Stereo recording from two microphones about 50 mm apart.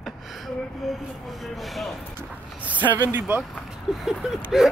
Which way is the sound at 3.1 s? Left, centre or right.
Right.